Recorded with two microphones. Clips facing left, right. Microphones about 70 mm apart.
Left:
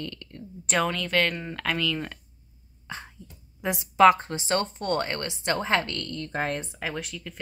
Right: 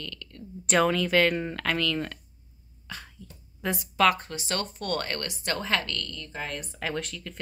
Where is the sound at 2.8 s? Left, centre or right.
Left.